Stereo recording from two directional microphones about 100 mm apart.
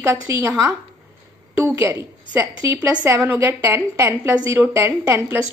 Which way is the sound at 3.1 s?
25° right (ahead or behind).